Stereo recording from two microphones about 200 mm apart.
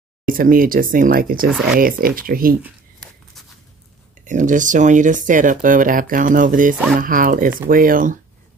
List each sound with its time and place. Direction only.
0.3 s speech: 45° right (ahead or behind)
2.6 s a sound: centre (ahead or behind)
4.2 s speech: 40° right (ahead or behind)